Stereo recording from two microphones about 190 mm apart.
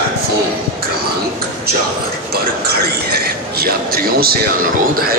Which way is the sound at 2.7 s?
55° right (ahead or behind).